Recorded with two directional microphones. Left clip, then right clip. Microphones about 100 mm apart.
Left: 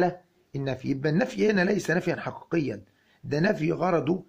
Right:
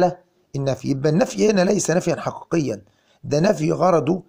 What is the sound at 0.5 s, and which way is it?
Speech, 45° right (ahead or behind).